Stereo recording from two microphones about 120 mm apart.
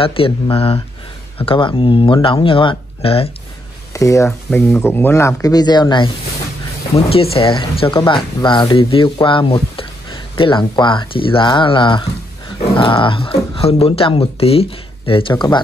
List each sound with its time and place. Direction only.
0.0 s speech: 50° left (ahead or behind)
3.9 s speech: 25° left (ahead or behind)
6.9 s speech: 55° left (ahead or behind)